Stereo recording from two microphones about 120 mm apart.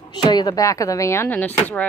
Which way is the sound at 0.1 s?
35° left (ahead or behind).